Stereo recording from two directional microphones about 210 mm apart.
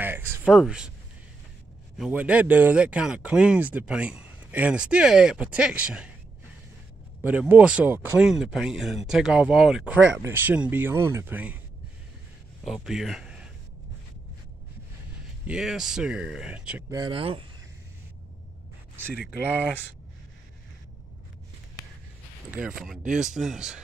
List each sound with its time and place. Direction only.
0.0 s a sound: 5° right (ahead or behind)
2.0 s speech: 5° right (ahead or behind)
7.2 s speech: 5° right (ahead or behind)
12.6 s speech: centre (ahead or behind)
15.4 s speech: 5° right (ahead or behind)
16.9 s speech: 20° right (ahead or behind)
22.5 s speech: 5° right (ahead or behind)
23.0 s speech: 35° right (ahead or behind)
23.3 s speech: centre (ahead or behind)